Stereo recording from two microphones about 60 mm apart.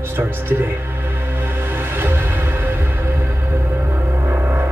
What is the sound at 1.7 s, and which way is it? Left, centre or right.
Music, right.